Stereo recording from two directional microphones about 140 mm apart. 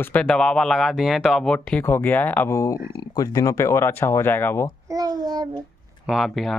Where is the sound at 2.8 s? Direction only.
90° left.